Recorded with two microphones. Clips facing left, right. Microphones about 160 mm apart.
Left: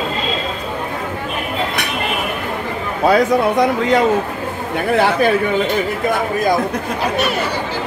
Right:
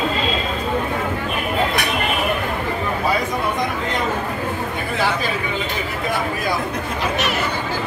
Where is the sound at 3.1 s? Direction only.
75° left (ahead or behind).